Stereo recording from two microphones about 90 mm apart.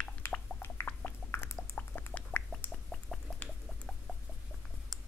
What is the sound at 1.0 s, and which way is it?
Chewing, 30° left (ahead or behind).